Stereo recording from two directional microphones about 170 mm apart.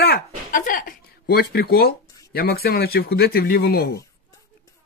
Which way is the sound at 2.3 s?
65° left (ahead or behind).